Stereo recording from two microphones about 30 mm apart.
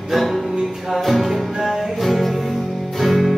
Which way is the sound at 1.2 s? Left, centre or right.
Centre.